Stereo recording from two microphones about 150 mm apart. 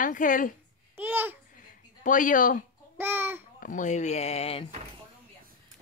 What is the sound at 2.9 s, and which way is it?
Babbling, 15° right (ahead or behind).